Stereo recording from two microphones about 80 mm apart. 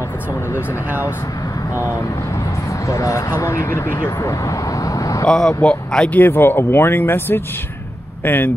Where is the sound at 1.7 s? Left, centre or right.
Left.